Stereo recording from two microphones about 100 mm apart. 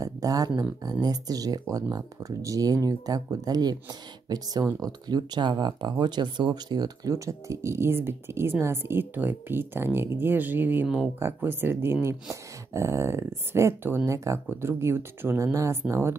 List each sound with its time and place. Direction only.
0.0 s a sound: 35° right (ahead or behind)
1.0 s speech: 40° right (ahead or behind)
4.8 s speech: 45° right (ahead or behind); by 16.2 s 25° right (ahead or behind)